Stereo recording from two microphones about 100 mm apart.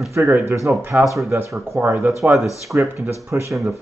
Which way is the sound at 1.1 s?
30° right (ahead or behind).